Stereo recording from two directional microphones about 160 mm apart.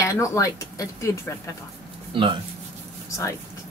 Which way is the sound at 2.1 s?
30° right (ahead or behind).